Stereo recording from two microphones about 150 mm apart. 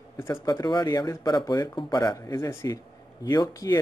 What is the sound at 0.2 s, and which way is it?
Speech, 20° left (ahead or behind).